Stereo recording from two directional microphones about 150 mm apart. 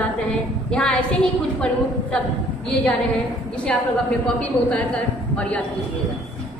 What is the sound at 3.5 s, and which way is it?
A woman's voice, 5° left (ahead or behind).